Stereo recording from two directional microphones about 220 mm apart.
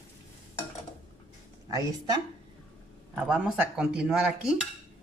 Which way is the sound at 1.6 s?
15° right (ahead or behind).